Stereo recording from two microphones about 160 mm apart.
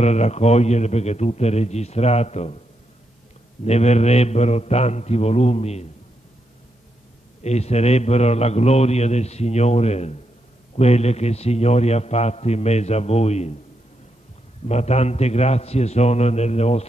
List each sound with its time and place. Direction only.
0.0 s a man's voice: 45° left (ahead or behind)
3.6 s a man's voice: 45° left (ahead or behind)
7.4 s a man's voice: 45° left (ahead or behind)
14.7 s a man's voice: 40° left (ahead or behind)